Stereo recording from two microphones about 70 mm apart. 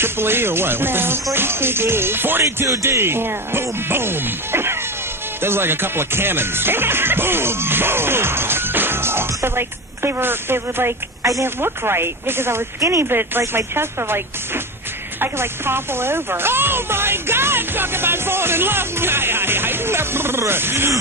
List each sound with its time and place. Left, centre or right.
0.0 s speech: right
2.4 s speech: right
5.4 s music: right
11.4 s speech: right